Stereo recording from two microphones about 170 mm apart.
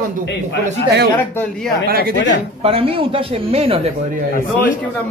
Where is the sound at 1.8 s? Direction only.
60° right (ahead or behind).